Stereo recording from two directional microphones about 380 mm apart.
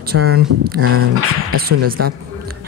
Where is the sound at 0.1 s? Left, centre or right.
Right.